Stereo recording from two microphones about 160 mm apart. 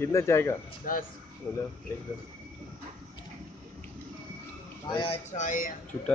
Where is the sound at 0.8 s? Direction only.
60° left (ahead or behind).